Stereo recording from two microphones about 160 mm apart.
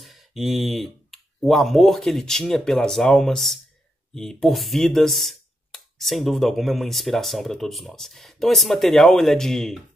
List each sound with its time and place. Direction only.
0.0 s speech: centre (ahead or behind)